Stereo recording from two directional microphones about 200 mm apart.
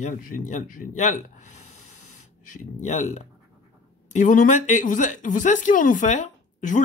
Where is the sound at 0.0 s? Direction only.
40° left (ahead or behind).